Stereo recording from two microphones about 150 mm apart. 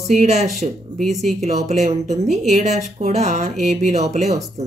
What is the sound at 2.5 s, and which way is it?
Speech, 50° right (ahead or behind).